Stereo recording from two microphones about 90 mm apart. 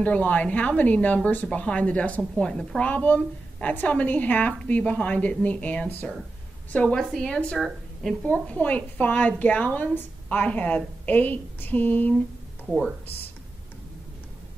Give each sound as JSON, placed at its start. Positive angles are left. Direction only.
{"t": 0.0, "sound": "a woman's voice", "side_deg": 15}
{"t": 7.0, "sound": "a woman's voice", "side_deg": 5}
{"t": 8.2, "sound": "a woman's voice", "side_deg": 15}